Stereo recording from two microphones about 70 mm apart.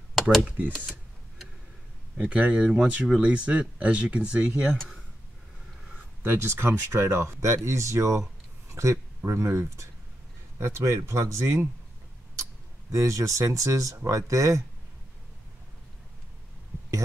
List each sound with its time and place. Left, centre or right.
0.4 s speech: right
2.1 s speech: centre
5.9 s speech: right
12.9 s speech: right